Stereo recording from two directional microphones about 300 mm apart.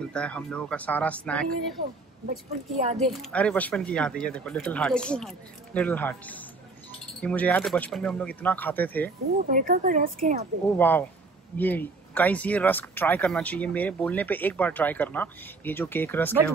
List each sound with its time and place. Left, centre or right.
0.0 s speech: centre
3.0 s speech: centre
9.5 s a woman's voice: right
10.8 s speech: centre